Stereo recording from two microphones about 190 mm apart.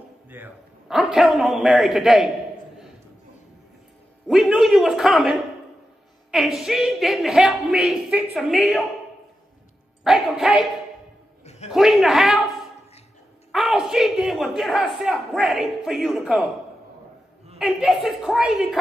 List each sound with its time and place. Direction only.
0.3 s a man's voice: 5° right (ahead or behind)
4.3 s a man's voice: centre (ahead or behind)
10.0 s a man's voice: centre (ahead or behind)
11.4 s a sound: 35° left (ahead or behind)
11.7 s a man's voice: centre (ahead or behind)
13.5 s a man's voice: centre (ahead or behind)
17.6 s a man's voice: 5° right (ahead or behind)